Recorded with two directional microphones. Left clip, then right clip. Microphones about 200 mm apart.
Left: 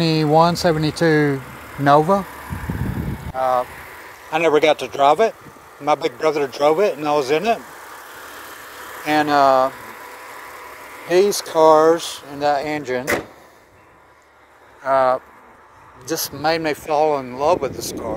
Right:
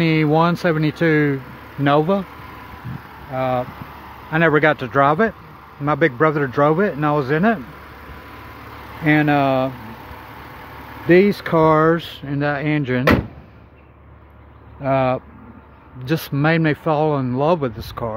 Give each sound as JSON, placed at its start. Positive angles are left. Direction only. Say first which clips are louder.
{"t": 0.0, "sound": "speech", "louder": "left 2 dB", "side_deg": 0}
{"t": 0.9, "sound": "speech", "louder": "left 1 dB", "side_deg": -30}
{"t": 2.0, "sound": "speech", "louder": "left 1 dB", "side_deg": -10}
{"t": 3.3, "sound": "speech", "louder": "left 2 dB", "side_deg": 0}
{"t": 9.0, "sound": "speech", "louder": "left 2 dB", "side_deg": 10}
{"t": 11.1, "sound": "speech", "louder": "right 2 dB", "side_deg": 5}
{"t": 14.9, "sound": "speech", "louder": "left 2 dB", "side_deg": -10}